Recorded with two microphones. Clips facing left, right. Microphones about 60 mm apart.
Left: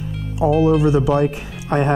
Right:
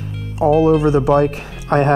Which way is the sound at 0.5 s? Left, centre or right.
Centre.